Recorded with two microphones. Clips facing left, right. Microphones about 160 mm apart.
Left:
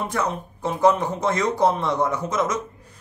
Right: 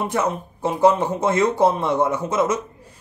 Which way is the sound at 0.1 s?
25° right (ahead or behind).